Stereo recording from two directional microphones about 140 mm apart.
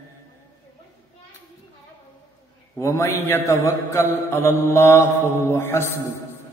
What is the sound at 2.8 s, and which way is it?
Mantra, 20° left (ahead or behind).